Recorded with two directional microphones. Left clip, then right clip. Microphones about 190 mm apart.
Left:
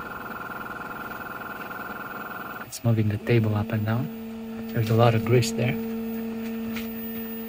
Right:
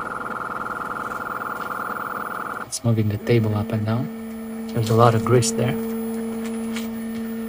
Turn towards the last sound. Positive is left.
turn(degrees=-10)  # may be behind; listen again after turning